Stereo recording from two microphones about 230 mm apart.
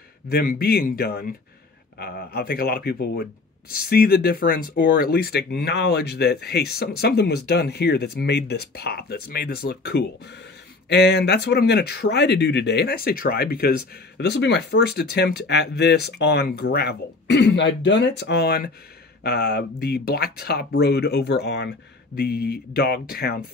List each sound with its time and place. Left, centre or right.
0.3 s speech: left
2.0 s rub: left